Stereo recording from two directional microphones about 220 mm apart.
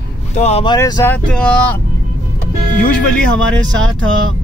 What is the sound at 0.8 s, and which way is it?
Speech, 15° left (ahead or behind).